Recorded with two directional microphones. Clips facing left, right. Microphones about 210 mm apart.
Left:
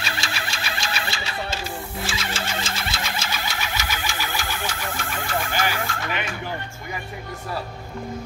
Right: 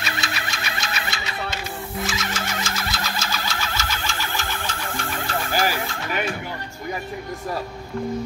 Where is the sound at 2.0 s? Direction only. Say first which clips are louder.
Right 2 dB; 30° left (ahead or behind); by 4.7 s 15° left (ahead or behind).